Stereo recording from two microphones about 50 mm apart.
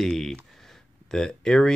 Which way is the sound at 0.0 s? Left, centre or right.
Centre.